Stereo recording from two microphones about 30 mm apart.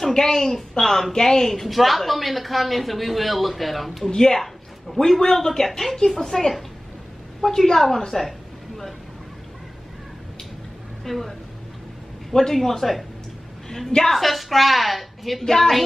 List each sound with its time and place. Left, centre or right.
0.1 s speech: centre
1.1 s a woman's voice: centre
4.2 s a woman's voice: centre
11.1 s a woman's voice: centre
15.4 s speech: centre